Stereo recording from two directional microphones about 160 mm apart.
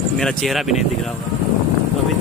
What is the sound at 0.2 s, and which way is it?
Speech, 5° left (ahead or behind).